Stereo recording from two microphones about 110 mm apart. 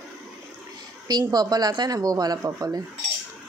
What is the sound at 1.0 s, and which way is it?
Speech, 40° right (ahead or behind).